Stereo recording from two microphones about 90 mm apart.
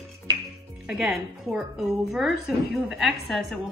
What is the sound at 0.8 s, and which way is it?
A woman's voice, 5° right (ahead or behind).